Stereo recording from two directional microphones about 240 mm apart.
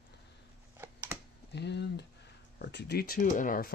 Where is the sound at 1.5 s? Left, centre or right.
Left.